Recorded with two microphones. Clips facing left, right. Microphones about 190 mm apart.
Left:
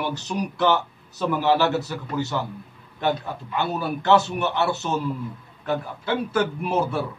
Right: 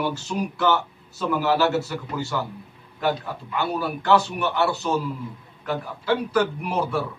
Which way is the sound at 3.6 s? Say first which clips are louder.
Even; 20° left (ahead or behind).